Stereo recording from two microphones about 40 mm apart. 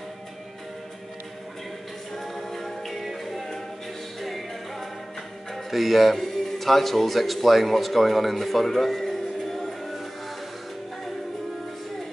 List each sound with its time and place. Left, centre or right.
2.1 s a capella: centre
4.2 s music: centre
5.5 s speech: centre